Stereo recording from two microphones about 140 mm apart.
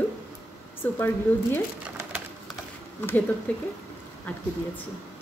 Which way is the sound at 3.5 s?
10° left (ahead or behind).